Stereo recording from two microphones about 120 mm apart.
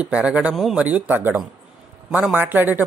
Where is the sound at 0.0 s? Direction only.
10° right (ahead or behind).